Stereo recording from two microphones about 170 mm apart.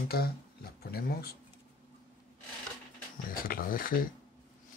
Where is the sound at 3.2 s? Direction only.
60° left (ahead or behind).